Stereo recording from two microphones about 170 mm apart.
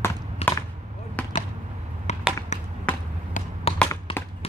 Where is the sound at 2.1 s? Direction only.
40° left (ahead or behind).